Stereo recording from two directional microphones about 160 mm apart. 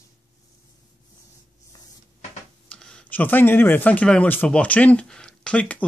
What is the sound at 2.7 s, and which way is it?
Speech, 5° left (ahead or behind).